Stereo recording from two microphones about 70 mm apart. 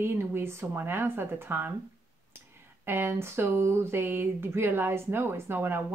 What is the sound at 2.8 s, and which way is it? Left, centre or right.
Speech, right.